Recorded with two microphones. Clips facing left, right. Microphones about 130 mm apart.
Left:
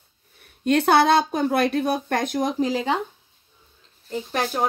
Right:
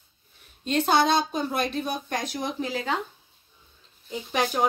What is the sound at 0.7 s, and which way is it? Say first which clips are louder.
Speech: left 5 dB; 65° left (ahead or behind).